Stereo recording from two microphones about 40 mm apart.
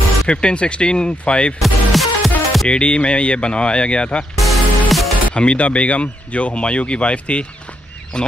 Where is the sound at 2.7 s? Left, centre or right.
Left.